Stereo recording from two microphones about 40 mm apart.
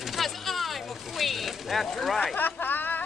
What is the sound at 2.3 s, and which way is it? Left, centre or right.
Vehicle, left.